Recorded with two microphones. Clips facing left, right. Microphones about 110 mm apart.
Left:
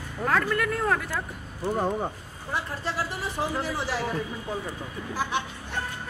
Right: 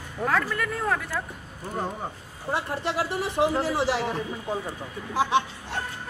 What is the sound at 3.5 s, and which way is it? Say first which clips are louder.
A man's voice: right 4 dB; 25° right (ahead or behind).